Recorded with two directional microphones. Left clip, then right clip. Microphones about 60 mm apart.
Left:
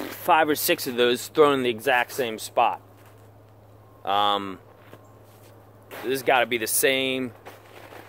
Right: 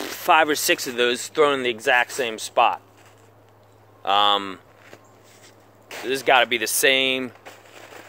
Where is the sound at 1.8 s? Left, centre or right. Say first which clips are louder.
Right 3 dB; left.